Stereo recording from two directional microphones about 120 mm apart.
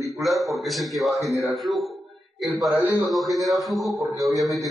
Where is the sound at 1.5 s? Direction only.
Centre (ahead or behind).